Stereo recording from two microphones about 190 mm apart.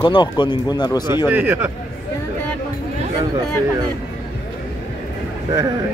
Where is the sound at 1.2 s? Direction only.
10° right (ahead or behind).